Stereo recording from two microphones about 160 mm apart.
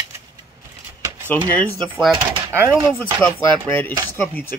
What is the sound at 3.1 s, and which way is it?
Speech, 10° left (ahead or behind).